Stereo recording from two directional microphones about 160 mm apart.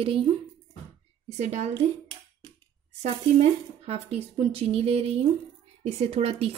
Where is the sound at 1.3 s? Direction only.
45° right (ahead or behind).